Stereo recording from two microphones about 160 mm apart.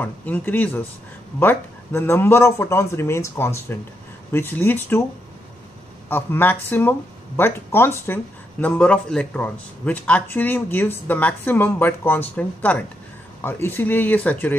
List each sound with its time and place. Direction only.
0.0 s speech: 10° left (ahead or behind)
6.0 s speech: 15° left (ahead or behind)